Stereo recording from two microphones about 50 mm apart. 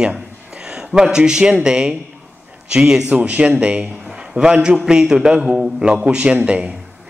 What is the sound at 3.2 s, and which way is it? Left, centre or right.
A man's voice, right.